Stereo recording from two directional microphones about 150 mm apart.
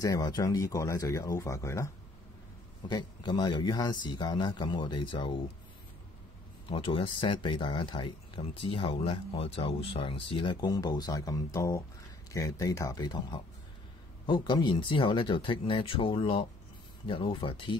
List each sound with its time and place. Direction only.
0.0 s speech: 25° left (ahead or behind)
2.9 s speech: 30° left (ahead or behind)
6.7 s speech: 35° left (ahead or behind)